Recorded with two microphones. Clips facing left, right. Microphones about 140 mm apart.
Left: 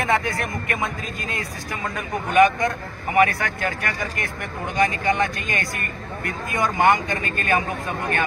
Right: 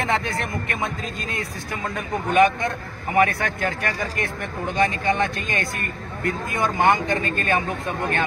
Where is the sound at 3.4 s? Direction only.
20° right (ahead or behind).